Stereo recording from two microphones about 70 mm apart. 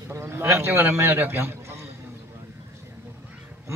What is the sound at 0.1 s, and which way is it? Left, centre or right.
A man's voice, right.